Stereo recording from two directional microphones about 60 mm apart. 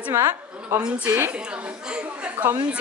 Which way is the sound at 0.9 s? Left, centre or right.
Right.